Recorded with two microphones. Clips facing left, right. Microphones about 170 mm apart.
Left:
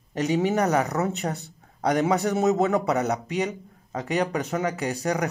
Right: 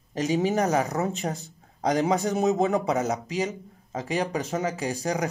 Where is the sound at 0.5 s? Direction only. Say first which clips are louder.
Left 1 dB; 35° right (ahead or behind).